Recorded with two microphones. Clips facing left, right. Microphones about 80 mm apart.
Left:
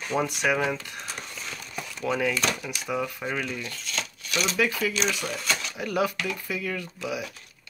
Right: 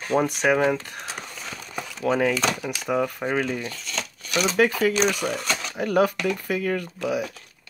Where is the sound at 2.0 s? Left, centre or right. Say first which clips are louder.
Right 4 dB; right.